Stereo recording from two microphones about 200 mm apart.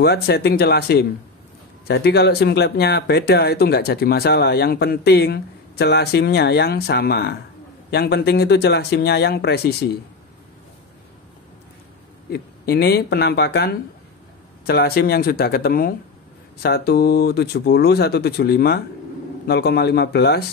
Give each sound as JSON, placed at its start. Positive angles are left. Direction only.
{"t": 0.0, "sound": "speech", "side_deg": 55}
{"t": 12.3, "sound": "speech", "side_deg": 55}